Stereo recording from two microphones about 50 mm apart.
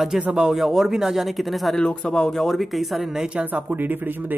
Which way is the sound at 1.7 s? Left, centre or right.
Centre.